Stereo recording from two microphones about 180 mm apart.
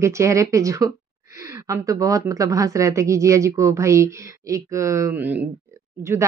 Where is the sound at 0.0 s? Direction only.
15° right (ahead or behind).